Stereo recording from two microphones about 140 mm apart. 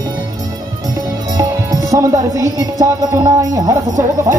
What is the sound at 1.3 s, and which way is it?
Music, 25° right (ahead or behind).